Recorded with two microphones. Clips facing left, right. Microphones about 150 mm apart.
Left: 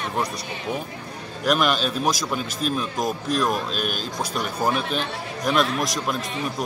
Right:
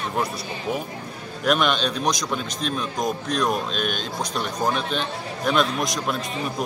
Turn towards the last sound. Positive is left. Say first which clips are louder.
# even
turn(degrees=0)  # may be behind; listen again after turning